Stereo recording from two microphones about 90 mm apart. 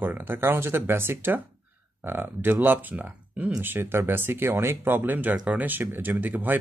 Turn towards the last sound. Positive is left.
turn(degrees=-20)  # may be behind; listen again after turning